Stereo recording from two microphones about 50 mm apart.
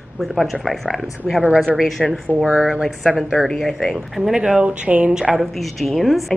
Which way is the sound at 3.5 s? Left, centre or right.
Centre.